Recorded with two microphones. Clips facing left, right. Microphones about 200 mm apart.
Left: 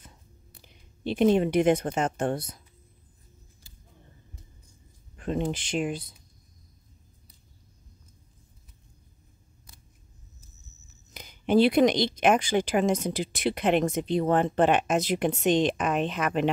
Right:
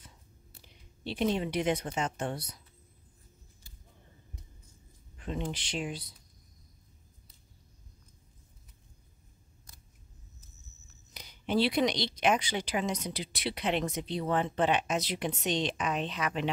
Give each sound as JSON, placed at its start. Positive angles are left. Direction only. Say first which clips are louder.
{"t": 0.6, "sound": "speech", "louder": "left 1 dB", "side_deg": 55}
{"t": 5.1, "sound": "a sound", "louder": "left 8 dB", "side_deg": 50}
{"t": 5.4, "sound": "speech", "louder": "left 7 dB", "side_deg": 50}
{"t": 11.1, "sound": "speech", "louder": "left 8 dB", "side_deg": 50}